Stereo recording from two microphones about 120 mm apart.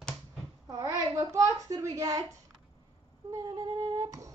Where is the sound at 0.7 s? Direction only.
30° right (ahead or behind).